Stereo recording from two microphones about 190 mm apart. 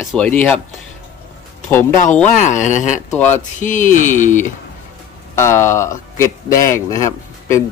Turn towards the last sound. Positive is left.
turn(degrees=15)  # may be behind; listen again after turning